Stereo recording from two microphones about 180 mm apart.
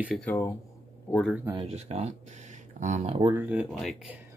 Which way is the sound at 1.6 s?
35° right (ahead or behind).